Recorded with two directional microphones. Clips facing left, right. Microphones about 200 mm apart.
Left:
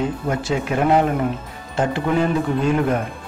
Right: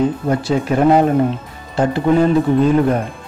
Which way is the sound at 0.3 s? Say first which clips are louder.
Right 5 dB; 35° right (ahead or behind).